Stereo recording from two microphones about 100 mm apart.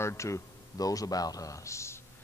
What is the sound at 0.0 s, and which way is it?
A man's voice, 30° left (ahead or behind).